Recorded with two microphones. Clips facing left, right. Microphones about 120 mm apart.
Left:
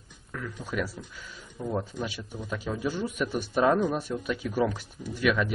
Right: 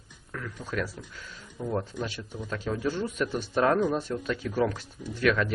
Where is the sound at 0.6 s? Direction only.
10° left (ahead or behind).